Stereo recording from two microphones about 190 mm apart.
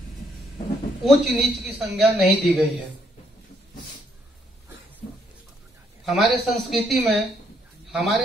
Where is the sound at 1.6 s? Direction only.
Centre (ahead or behind).